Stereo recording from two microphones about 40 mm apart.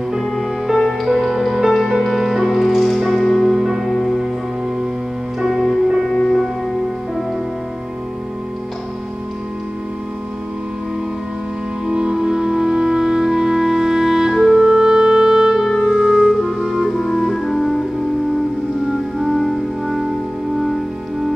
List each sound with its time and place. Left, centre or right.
0.2 s music: centre
5.4 s music: centre
6.0 s music: centre
11.8 s music: centre
14.4 s clarinet: centre
15.9 s music: centre
17.0 s organ: centre
19.1 s music: centre